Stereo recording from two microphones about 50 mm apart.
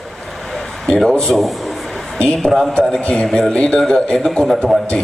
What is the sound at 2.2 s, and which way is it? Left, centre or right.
Speech, centre.